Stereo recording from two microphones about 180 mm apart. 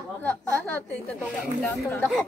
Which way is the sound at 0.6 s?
10° left (ahead or behind).